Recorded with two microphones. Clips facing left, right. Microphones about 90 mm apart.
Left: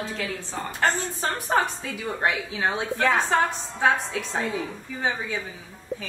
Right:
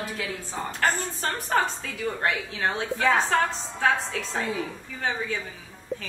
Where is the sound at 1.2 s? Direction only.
15° left (ahead or behind).